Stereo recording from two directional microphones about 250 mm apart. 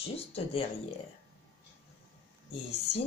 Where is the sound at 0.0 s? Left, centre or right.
Left.